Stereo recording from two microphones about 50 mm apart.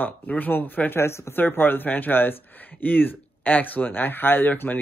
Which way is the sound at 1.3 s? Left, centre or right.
Left.